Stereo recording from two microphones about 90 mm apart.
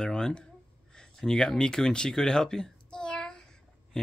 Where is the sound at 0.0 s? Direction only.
10° left (ahead or behind).